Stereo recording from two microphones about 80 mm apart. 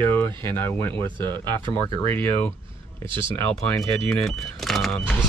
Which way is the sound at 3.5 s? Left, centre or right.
Centre.